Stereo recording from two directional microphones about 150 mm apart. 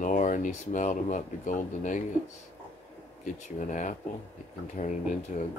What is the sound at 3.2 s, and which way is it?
Speech, 55° left (ahead or behind).